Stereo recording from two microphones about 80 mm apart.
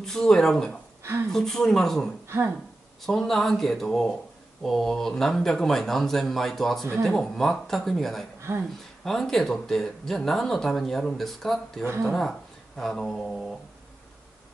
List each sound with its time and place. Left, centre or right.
0.0 s speech: centre
2.2 s speech: right
3.0 s speech: centre
8.5 s speech: right
9.0 s speech: centre